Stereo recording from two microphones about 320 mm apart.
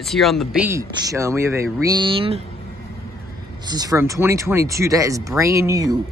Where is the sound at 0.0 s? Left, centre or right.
Centre.